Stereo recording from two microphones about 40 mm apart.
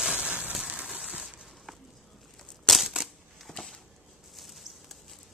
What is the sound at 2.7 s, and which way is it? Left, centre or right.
Crushing, centre.